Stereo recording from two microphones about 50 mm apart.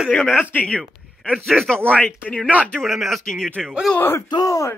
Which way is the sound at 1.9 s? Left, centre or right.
Left.